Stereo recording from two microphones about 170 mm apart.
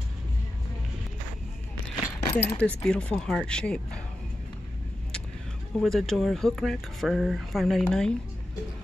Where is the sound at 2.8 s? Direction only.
5° left (ahead or behind).